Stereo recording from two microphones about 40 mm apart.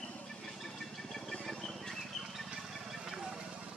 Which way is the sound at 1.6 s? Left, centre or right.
Centre.